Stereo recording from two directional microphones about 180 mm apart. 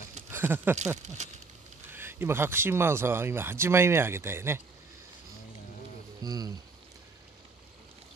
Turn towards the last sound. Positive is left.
turn(degrees=-20)  # may be behind; listen again after turning